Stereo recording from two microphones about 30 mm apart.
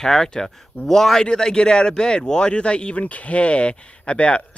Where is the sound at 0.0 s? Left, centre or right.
Left.